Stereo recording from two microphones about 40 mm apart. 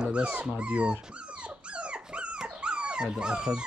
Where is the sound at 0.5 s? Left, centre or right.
Right.